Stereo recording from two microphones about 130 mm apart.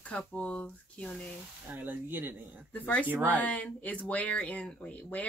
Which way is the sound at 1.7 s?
15° right (ahead or behind).